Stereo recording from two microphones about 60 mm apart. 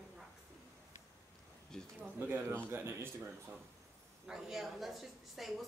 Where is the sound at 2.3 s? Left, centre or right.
Right.